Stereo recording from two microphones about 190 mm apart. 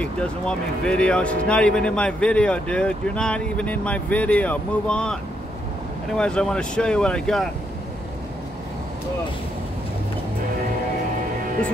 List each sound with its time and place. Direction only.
0.0 s speech: 5° left (ahead or behind)